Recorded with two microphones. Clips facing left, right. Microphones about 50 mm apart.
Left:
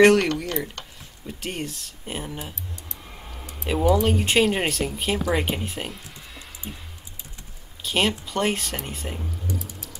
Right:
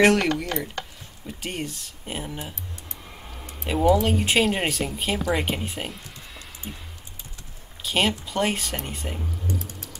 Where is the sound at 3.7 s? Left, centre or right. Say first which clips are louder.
Even; centre.